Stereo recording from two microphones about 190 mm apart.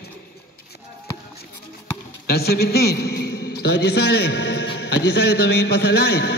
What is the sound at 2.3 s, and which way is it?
A man's voice, 55° left (ahead or behind).